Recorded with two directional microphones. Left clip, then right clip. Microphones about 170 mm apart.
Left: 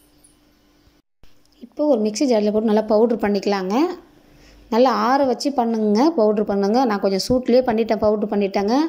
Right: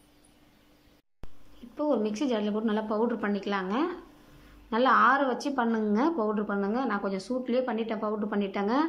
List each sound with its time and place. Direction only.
1.8 s speech: 20° left (ahead or behind)